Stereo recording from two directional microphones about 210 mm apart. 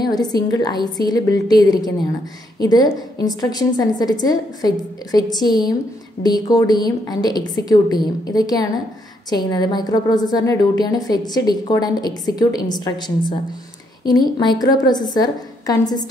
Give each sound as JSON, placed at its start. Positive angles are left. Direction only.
{"t": 0.0, "sound": "a woman's voice", "side_deg": 20}
{"t": 14.4, "sound": "a woman's voice", "side_deg": 20}